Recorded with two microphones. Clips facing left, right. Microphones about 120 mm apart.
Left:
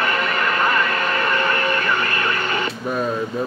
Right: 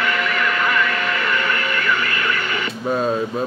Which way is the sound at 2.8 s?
20° right (ahead or behind).